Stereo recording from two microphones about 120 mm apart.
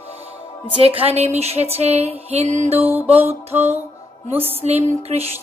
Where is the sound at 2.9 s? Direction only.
15° right (ahead or behind).